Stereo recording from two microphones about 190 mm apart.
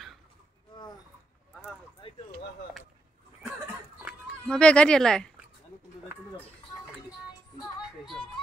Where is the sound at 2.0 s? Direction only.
25° left (ahead or behind).